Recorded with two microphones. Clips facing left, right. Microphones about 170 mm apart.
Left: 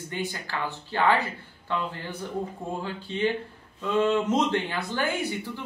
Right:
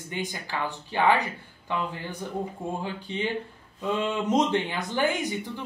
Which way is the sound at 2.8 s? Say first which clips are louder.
Left 3 dB; 15° right (ahead or behind).